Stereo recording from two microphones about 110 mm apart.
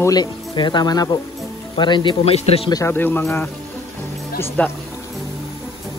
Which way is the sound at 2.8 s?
20° left (ahead or behind).